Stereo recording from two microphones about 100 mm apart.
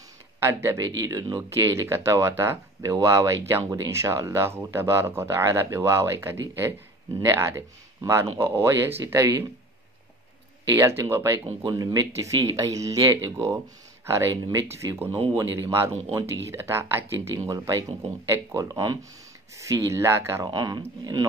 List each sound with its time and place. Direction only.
0.4 s speech: 25° right (ahead or behind)
10.7 s speech: 25° right (ahead or behind)
11.6 s speech: 35° right (ahead or behind)
20.4 s speech: 40° right (ahead or behind)